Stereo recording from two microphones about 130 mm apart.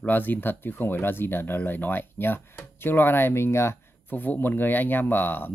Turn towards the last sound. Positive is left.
turn(degrees=15)  # may be behind; listen again after turning